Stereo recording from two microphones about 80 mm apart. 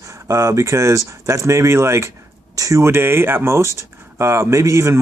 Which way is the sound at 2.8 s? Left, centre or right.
Right.